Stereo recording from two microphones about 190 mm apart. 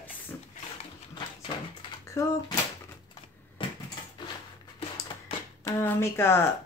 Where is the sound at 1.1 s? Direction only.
25° left (ahead or behind).